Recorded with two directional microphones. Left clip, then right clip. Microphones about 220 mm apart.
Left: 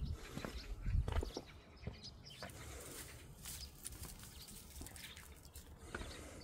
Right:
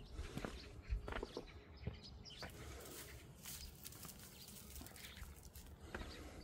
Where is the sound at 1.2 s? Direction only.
45° left (ahead or behind).